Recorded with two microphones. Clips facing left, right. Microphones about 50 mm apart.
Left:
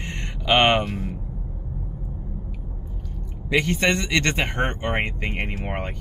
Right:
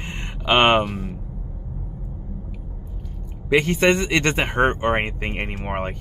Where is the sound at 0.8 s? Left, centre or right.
Centre.